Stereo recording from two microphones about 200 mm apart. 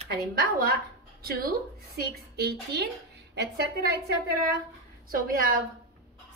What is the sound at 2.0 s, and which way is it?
Speech, 50° right (ahead or behind).